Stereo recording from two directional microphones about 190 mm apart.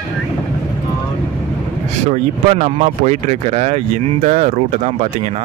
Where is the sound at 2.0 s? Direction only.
35° right (ahead or behind).